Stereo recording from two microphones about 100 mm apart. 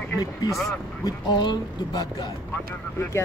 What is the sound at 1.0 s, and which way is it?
Speech, 45° left (ahead or behind).